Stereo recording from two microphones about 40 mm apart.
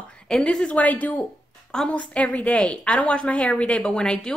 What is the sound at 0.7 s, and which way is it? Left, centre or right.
Speech, left.